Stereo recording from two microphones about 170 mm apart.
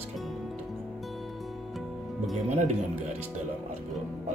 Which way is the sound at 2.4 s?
40° right (ahead or behind).